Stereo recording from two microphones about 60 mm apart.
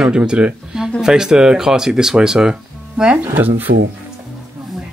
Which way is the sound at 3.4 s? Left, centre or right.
Right.